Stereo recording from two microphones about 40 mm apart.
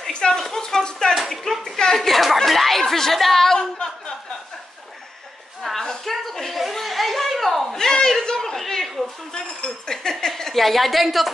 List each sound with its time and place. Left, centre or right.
0.1 s a woman's voice: centre
3.5 s a woman's voice: centre
5.8 s a woman's voice: centre